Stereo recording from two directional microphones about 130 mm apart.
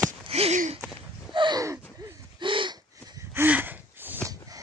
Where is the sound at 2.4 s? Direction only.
40° right (ahead or behind).